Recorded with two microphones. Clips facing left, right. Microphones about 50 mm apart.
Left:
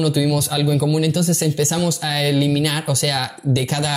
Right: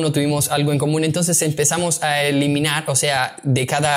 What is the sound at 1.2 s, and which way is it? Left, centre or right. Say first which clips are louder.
Speech: left 1 dB; right.